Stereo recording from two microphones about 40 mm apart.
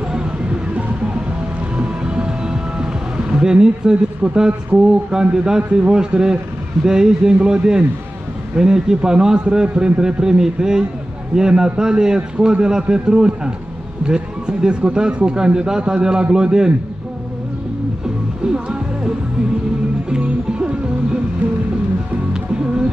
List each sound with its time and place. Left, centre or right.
0.1 s music: right
5.1 s a man's voice: right
18.4 s music: centre